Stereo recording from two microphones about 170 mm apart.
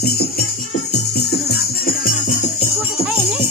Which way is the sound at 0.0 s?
65° left (ahead or behind).